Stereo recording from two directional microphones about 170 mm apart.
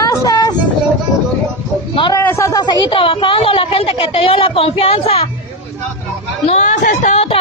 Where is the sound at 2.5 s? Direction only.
25° left (ahead or behind).